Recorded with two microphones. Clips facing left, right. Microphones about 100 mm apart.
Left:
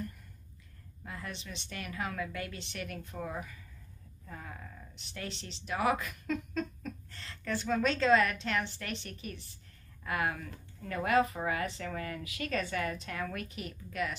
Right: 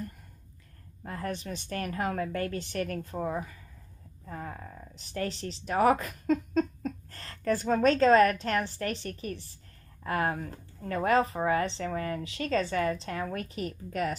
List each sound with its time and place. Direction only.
1.0 s a woman's voice: 45° right (ahead or behind)